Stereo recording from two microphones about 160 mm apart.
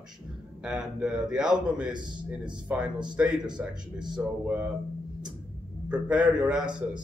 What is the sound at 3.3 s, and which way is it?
Speech, 25° right (ahead or behind).